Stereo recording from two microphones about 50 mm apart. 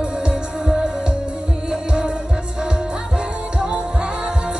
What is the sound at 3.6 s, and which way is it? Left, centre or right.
Music, right.